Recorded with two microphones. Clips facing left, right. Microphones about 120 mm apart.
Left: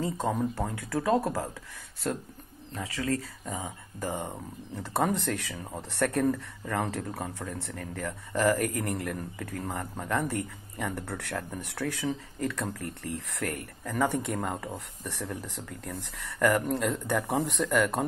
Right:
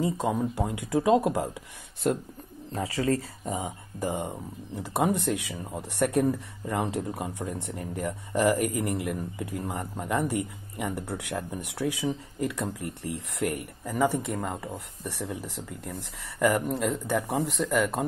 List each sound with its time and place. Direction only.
0.0 s speech: 10° right (ahead or behind)
2.7 s speech: 30° right (ahead or behind)
3.6 s speech: 15° right (ahead or behind)
15.0 s speech: 10° right (ahead or behind)